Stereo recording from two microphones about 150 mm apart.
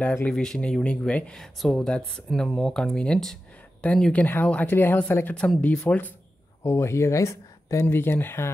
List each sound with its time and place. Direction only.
0.0 s speech: 10° left (ahead or behind)